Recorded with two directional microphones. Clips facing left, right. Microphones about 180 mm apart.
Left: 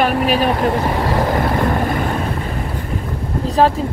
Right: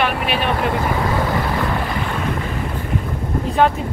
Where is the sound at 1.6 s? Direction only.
45° left (ahead or behind).